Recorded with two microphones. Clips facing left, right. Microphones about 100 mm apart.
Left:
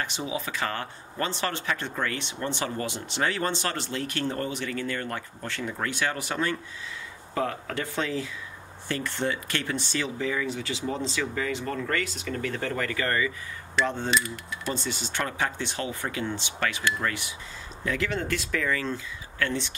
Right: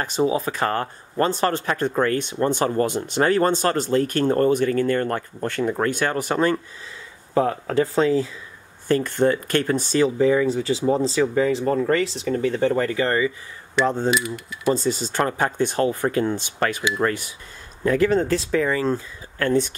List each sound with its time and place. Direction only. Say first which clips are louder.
0.0 s speech: right 10 dB; 40° right (ahead or behind)
7.3 s speech: right 9 dB; 30° right (ahead or behind)
13.8 s speech: right 8 dB; 35° right (ahead or behind)
14.1 s speech: right 3 dB; 5° right (ahead or behind)
14.7 s speech: right 11 dB; 40° right (ahead or behind)